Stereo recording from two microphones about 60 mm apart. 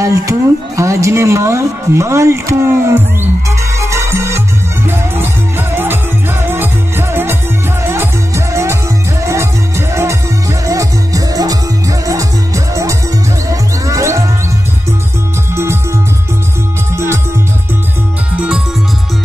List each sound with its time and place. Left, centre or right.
0.0 s speech: right
3.8 s music: right
4.8 s music: right
9.2 s music: right
10.7 s music: right
12.1 s music: right
15.5 s music: right
16.9 s music: right